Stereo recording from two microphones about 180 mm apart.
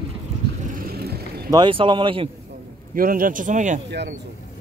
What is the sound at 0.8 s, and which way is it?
Vehicle, 60° right (ahead or behind).